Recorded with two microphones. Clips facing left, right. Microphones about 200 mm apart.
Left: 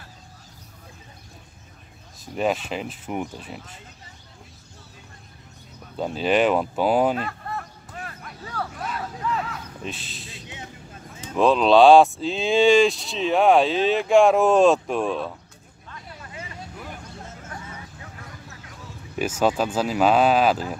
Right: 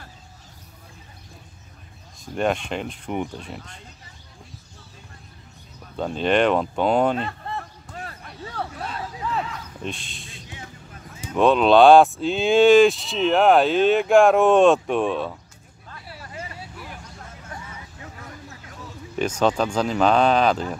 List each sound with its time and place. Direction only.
2.3 s speech: 5° left (ahead or behind)
5.9 s speech: 5° left (ahead or behind)
7.2 s basketball bounce: 25° right (ahead or behind)
8.5 s a sound: 30° right (ahead or behind)
9.5 s a sound: 5° left (ahead or behind)
10.5 s vehicle: 20° left (ahead or behind)
11.3 s speech: centre (ahead or behind)
19.1 s speech: 5° left (ahead or behind)